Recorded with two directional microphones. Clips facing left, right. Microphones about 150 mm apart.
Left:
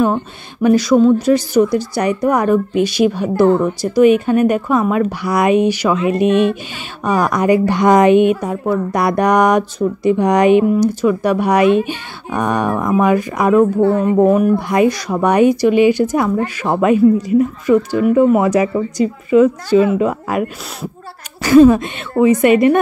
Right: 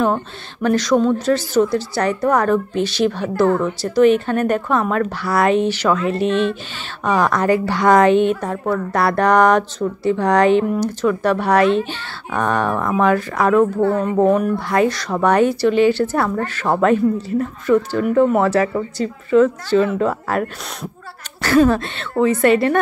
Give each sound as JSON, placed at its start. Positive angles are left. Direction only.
{"t": 0.0, "sound": "speech", "side_deg": 10}